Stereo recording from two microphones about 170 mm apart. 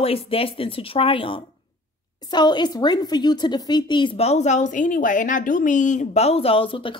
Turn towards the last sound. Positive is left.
turn(degrees=30)  # may be behind; listen again after turning